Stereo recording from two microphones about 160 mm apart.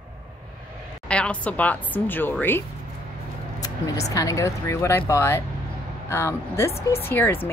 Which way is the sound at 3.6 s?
20° left (ahead or behind).